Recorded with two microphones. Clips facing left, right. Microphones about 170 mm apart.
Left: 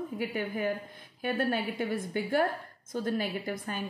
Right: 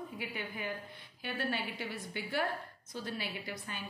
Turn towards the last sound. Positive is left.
turn(degrees=50)  # may be behind; listen again after turning